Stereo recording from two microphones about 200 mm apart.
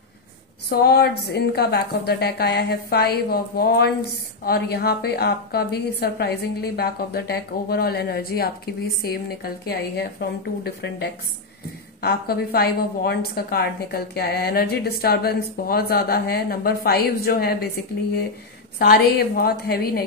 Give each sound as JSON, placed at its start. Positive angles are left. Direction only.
{"t": 0.7, "sound": "a woman's voice", "side_deg": 55}
{"t": 18.8, "sound": "a woman's voice", "side_deg": 50}